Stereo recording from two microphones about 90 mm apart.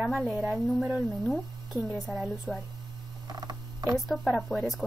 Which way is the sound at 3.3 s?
50° right (ahead or behind).